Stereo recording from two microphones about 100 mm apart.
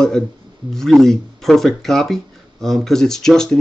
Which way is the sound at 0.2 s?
5° left (ahead or behind).